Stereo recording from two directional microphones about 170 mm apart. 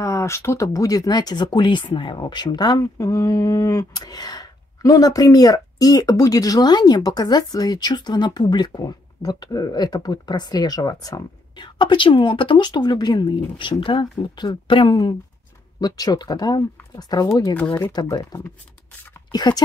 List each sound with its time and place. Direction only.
0.0 s speech: 15° left (ahead or behind)